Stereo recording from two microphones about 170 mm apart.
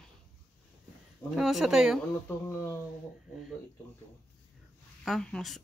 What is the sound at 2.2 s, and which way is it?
Speech, 15° left (ahead or behind).